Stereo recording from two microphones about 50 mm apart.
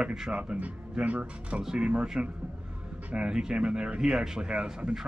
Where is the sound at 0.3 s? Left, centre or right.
Right.